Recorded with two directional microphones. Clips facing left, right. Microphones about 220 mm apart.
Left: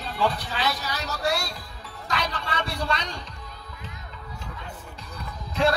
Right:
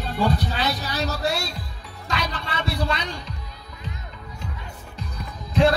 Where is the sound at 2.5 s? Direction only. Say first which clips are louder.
Right 3 dB; 5° right (ahead or behind).